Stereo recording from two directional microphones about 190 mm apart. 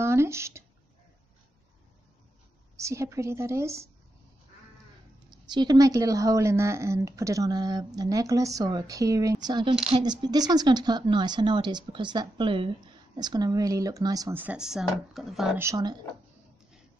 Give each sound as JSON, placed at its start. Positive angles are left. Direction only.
{"t": 0.0, "sound": "a sound", "side_deg": -15}
{"t": 2.8, "sound": "a woman's voice", "side_deg": -15}
{"t": 5.5, "sound": "a woman's voice", "side_deg": -20}
{"t": 15.6, "sound": "speech", "side_deg": -20}